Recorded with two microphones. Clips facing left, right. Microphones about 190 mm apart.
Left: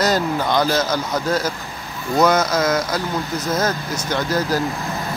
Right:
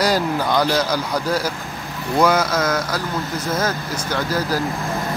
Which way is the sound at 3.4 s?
10° right (ahead or behind).